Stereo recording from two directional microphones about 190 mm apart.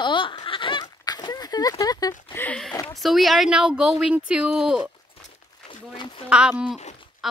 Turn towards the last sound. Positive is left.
turn(degrees=0)  # may be behind; listen again after turning